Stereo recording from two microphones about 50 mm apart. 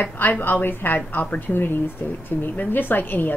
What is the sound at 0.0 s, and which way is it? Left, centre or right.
A woman's voice, left.